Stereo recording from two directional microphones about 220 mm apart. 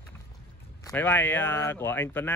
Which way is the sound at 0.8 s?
10° left (ahead or behind).